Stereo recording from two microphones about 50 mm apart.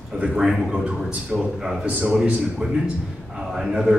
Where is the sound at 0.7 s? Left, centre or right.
Right.